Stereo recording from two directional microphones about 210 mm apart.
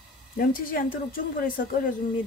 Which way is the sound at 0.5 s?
40° left (ahead or behind).